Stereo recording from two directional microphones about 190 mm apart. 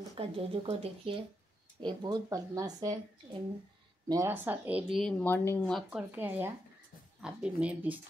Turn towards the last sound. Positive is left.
turn(degrees=-10)  # may be behind; listen again after turning